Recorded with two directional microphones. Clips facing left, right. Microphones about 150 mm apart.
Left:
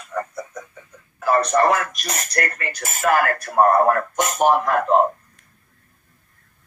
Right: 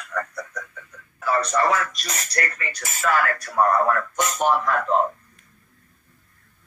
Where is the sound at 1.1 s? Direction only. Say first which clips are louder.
Left 4 dB; 50° left (ahead or behind).